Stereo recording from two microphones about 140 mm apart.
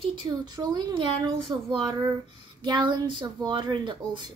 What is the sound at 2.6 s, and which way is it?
Speech, 35° right (ahead or behind).